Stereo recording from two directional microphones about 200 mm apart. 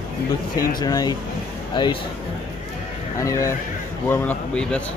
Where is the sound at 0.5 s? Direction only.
45° left (ahead or behind).